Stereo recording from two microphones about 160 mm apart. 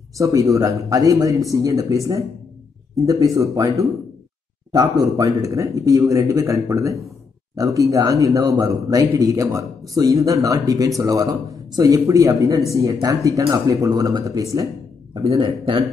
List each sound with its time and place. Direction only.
0.2 s a man's voice: 20° right (ahead or behind)
15.2 s a man's voice: 35° right (ahead or behind)